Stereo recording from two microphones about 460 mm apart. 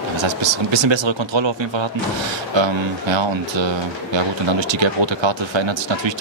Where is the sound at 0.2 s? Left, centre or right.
Right.